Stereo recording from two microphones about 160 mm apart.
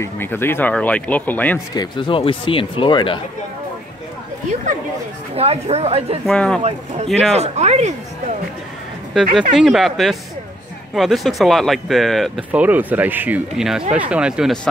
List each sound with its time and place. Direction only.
0.0 s speech: 15° left (ahead or behind)
1.8 s speech: 30° left (ahead or behind)
5.3 s a woman's voice: 40° right (ahead or behind)
6.2 s speech: 5° left (ahead or behind)
7.3 s speech: 45° right (ahead or behind)
9.1 s speech: 5° right (ahead or behind)
12.4 s speech: 10° right (ahead or behind)